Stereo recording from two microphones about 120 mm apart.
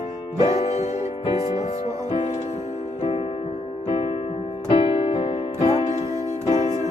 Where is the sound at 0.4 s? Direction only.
60° left (ahead or behind).